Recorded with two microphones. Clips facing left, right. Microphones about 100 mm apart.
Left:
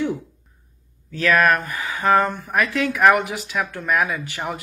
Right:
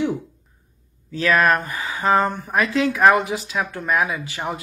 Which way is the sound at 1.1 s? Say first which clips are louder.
Even; 20° right (ahead or behind).